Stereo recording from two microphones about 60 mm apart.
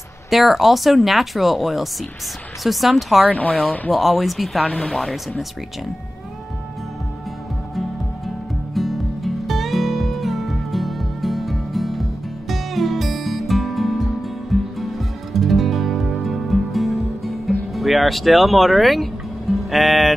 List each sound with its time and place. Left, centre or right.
0.3 s speech: centre
3.3 s speech: left
3.9 s speech: centre
4.6 s speech: left
4.9 s speech: centre
8.7 s music: centre